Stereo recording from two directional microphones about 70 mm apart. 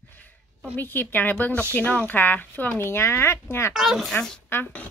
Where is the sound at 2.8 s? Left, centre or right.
Left.